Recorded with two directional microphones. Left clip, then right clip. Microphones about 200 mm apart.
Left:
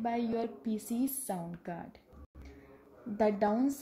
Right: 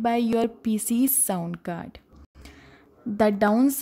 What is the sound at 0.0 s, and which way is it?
Speech, 35° right (ahead or behind).